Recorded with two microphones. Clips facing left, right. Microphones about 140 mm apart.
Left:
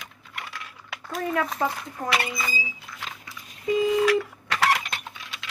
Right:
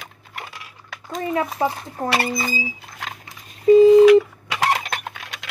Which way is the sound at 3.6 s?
35° right (ahead or behind).